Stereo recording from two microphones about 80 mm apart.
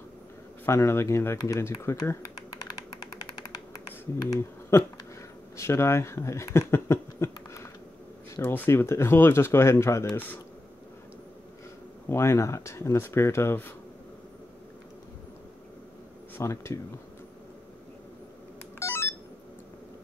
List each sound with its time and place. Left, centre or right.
0.7 s speech: left
4.4 s speech: left
10.1 s speech: left
12.1 s speech: left
16.3 s speech: left
18.8 s a sound: left